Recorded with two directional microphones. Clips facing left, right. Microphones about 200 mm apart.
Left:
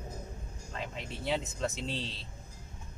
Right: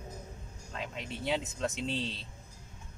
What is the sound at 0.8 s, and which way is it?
Speech, centre (ahead or behind).